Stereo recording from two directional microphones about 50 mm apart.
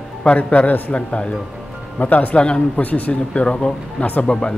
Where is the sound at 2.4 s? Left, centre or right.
Left.